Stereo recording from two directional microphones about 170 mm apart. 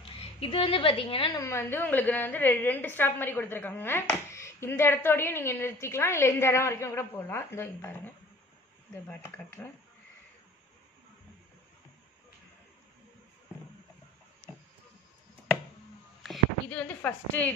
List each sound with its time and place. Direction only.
0.2 s a woman's voice: 35° left (ahead or behind)
1.4 s a woman's voice: 15° left (ahead or behind)
9.2 s a woman's voice: 15° left (ahead or behind)
16.2 s a sound: 5° left (ahead or behind)